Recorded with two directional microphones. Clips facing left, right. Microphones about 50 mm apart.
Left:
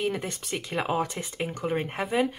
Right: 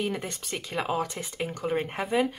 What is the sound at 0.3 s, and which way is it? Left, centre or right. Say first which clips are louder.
Speech: left 2 dB; centre.